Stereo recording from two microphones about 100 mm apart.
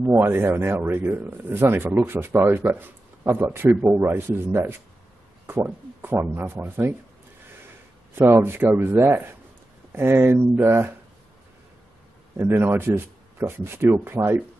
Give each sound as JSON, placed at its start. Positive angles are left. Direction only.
{"t": 0.0, "sound": "speech", "side_deg": -25}
{"t": 8.1, "sound": "speech", "side_deg": -25}
{"t": 12.4, "sound": "speech", "side_deg": -25}